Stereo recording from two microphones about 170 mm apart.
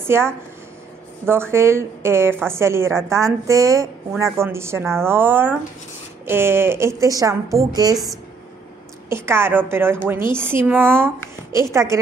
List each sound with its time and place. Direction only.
0.0 s a woman's voice: 15° right (ahead or behind)
9.1 s a woman's voice: 15° right (ahead or behind)